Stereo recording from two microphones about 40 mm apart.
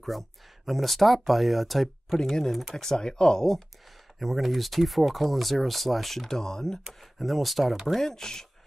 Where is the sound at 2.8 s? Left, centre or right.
Centre.